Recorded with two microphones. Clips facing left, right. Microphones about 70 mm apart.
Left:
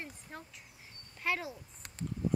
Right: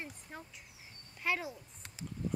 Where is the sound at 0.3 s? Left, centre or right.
Centre.